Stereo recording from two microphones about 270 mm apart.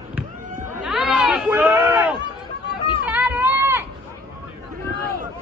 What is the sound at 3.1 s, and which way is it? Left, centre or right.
Run, centre.